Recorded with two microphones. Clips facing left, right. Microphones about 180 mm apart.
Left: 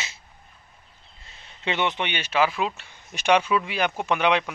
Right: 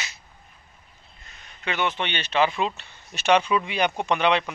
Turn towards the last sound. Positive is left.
turn(degrees=10)  # may be behind; listen again after turning